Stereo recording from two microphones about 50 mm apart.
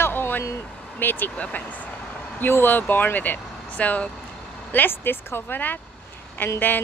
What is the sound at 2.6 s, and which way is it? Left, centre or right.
Speech, left.